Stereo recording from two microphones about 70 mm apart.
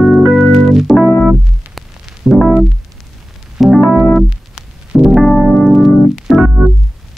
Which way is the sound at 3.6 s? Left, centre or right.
Centre.